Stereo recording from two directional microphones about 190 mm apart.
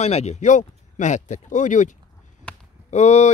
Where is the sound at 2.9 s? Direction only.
35° left (ahead or behind).